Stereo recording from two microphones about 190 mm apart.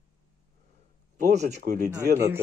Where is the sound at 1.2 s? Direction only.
35° right (ahead or behind).